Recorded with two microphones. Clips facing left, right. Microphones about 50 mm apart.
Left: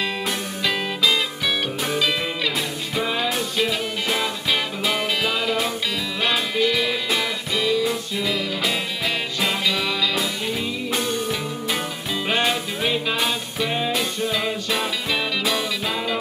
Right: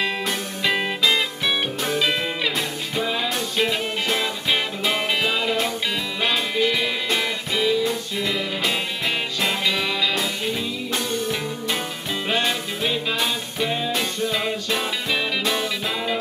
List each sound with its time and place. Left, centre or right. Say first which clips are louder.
0.0 s music: right 1 dB; centre
3.2 s music: left 1 dB; centre
4.5 s music: right 1 dB; centre
10.9 s music: left 1 dB; centre